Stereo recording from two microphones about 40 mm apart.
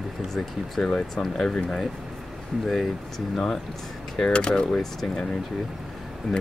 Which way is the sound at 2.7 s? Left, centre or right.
Centre.